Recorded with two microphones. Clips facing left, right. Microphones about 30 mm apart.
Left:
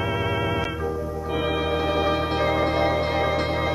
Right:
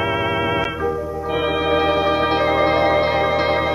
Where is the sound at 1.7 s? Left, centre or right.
Right.